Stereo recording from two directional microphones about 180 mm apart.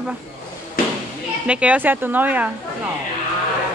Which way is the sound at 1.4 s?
5° right (ahead or behind).